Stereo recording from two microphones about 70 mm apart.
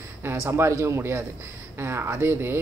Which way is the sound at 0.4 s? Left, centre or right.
Right.